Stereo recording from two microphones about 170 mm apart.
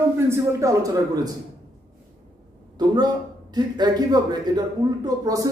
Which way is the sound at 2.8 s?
25° right (ahead or behind).